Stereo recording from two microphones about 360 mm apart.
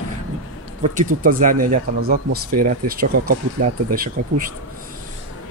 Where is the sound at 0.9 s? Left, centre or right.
Right.